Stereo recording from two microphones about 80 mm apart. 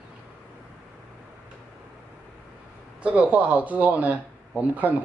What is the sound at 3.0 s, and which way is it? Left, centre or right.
Speech, centre.